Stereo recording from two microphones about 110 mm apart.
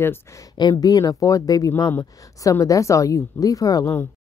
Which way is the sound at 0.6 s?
40° left (ahead or behind).